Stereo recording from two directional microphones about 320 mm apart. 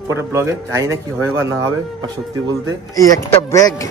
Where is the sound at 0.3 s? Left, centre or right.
Centre.